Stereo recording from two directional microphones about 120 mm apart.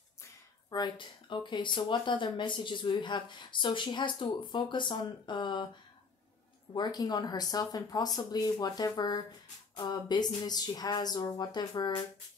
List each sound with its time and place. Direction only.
0.7 s speech: 35° left (ahead or behind)
6.7 s speech: 35° left (ahead or behind)